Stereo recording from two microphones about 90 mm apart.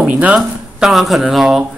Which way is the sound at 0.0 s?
15° right (ahead or behind).